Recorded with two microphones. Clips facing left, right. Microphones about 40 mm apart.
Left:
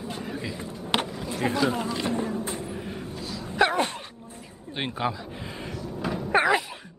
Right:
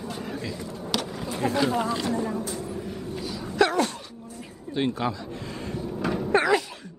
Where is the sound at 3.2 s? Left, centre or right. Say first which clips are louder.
Right 2 dB; centre.